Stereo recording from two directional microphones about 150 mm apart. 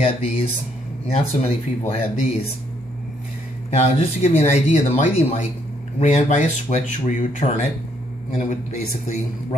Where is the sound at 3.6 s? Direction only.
45° left (ahead or behind).